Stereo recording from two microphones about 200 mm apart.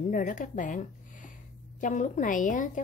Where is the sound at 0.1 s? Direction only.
40° left (ahead or behind).